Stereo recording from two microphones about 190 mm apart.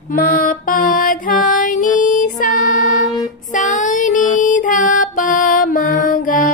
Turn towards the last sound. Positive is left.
turn(degrees=45)  # may be behind; listen again after turning